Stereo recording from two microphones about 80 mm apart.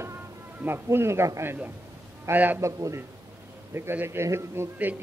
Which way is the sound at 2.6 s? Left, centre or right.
Right.